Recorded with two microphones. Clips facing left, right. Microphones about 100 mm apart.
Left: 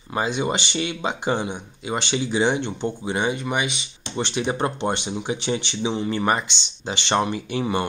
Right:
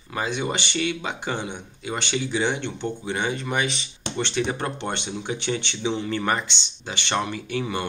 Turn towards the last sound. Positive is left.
turn(degrees=20)  # may be behind; listen again after turning